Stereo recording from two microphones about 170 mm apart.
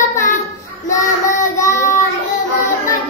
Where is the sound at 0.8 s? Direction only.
20° left (ahead or behind).